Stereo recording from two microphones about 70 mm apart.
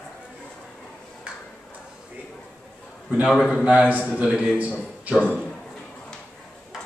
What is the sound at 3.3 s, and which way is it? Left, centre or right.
Speech, centre.